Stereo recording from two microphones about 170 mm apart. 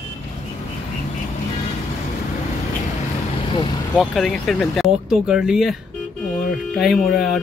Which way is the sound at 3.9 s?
Centre (ahead or behind).